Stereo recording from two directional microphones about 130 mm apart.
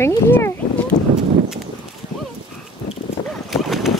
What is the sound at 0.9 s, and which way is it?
Clip-clop, 75° left (ahead or behind).